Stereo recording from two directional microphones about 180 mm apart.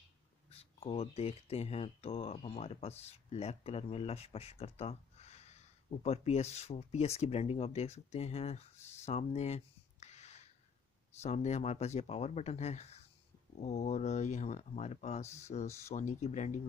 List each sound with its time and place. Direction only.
0.5 s speech: 30° left (ahead or behind)